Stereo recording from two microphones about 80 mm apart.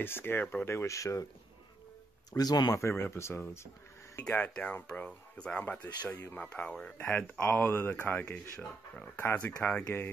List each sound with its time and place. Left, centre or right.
0.0 s speech: left
0.7 s speech: left
2.3 s speech: left
2.7 s speech: left
4.2 s speech: centre
6.0 s speech: left
6.4 s speech: centre
9.2 s speech: left
9.6 s speech: centre